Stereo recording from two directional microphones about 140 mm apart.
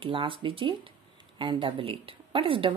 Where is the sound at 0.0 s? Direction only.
40° right (ahead or behind).